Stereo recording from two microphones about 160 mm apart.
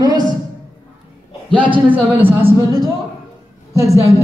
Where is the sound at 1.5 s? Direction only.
30° right (ahead or behind).